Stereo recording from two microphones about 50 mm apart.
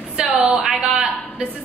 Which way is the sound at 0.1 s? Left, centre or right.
Centre.